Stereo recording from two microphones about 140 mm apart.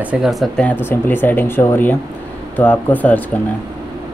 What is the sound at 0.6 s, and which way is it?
Speech, 15° left (ahead or behind).